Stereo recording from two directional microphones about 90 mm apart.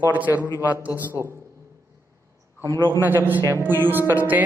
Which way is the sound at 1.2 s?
45° right (ahead or behind).